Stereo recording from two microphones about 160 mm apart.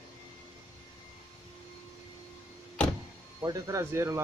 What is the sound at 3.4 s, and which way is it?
Speech, 20° right (ahead or behind).